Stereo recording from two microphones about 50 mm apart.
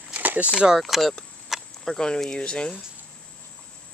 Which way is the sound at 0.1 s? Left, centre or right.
Right.